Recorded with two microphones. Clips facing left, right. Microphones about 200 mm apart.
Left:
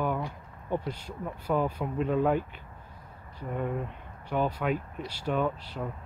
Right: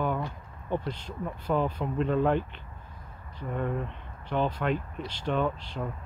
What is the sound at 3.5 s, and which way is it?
Speech, 5° left (ahead or behind).